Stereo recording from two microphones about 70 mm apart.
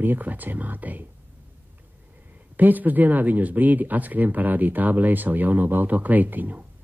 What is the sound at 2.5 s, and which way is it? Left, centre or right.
Speech, right.